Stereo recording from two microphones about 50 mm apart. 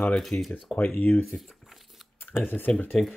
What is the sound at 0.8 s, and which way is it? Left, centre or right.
Speech, left.